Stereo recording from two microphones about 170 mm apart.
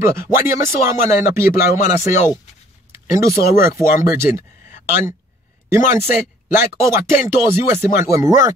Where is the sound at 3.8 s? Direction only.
15° right (ahead or behind).